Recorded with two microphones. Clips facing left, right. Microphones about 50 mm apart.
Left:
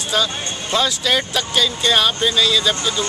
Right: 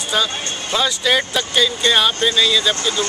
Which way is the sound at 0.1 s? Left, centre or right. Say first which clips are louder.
Even; centre.